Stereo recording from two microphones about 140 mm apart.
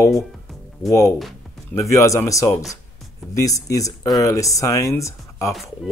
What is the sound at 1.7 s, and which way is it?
Speech, 20° left (ahead or behind).